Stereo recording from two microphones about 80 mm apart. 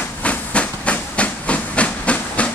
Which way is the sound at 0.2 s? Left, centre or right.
Centre.